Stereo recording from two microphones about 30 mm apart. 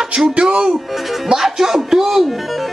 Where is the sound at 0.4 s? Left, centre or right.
Right.